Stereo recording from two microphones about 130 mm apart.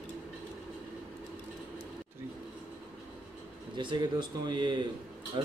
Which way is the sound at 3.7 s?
35° right (ahead or behind).